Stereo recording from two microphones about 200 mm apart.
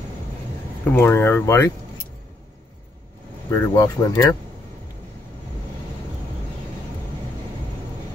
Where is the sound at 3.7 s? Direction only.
15° left (ahead or behind).